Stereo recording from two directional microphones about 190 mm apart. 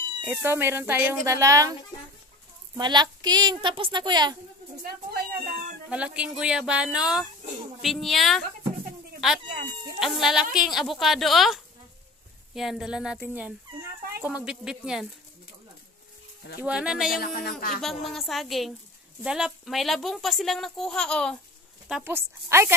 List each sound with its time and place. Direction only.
0.2 s speech: 10° right (ahead or behind)
2.8 s a woman's voice: 20° right (ahead or behind)
4.8 s speech: 50° right (ahead or behind)
5.9 s speech: 5° right (ahead or behind)
9.9 s speech: centre (ahead or behind)
16.6 s speech: 5° right (ahead or behind)
17.1 s speech: 50° left (ahead or behind)
17.8 s speech: centre (ahead or behind)
21.8 s speech: 5° right (ahead or behind)